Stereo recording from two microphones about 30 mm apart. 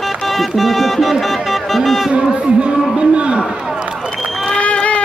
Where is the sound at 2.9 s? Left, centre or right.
Right.